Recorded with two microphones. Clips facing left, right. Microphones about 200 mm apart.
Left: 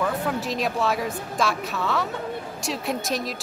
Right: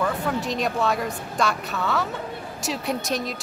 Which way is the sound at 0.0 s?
Centre (ahead or behind).